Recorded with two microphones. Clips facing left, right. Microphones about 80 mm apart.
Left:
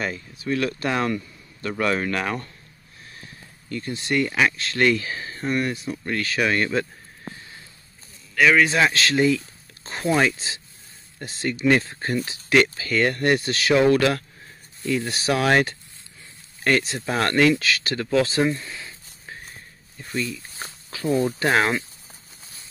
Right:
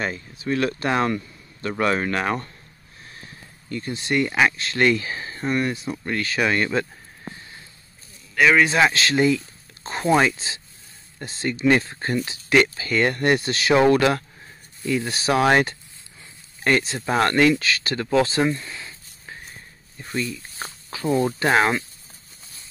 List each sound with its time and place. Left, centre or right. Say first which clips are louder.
0.0 s speech: right 1 dB; right
3.6 s speech: right 1 dB; centre
8.4 s speech: right 1 dB; centre
11.2 s speech: right 1 dB; centre
15.3 s speech: right 2 dB; centre
17.0 s speech: right 2 dB; centre
18.3 s a sound: even; centre
20.0 s speech: right 1 dB; centre